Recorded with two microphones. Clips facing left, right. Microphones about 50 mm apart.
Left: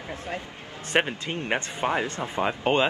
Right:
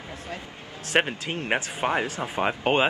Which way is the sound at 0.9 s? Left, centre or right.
Centre.